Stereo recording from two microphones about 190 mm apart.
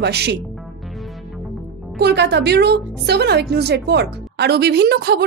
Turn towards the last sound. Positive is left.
turn(degrees=-60)  # may be behind; listen again after turning